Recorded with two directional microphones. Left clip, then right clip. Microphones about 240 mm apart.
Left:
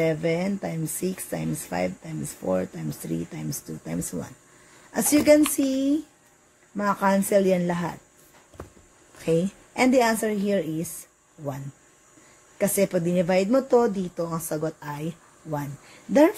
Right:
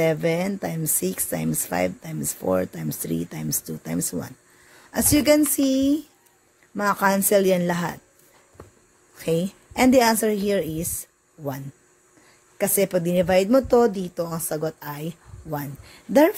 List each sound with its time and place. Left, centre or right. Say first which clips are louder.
0.0 s speech: right 3 dB; right
9.2 s speech: even; right
12.5 s speech: right 1 dB; right